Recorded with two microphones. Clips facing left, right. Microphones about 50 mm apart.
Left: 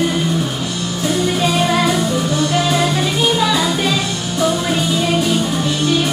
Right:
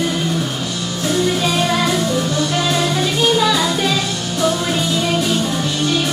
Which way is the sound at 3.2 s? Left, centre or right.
Centre.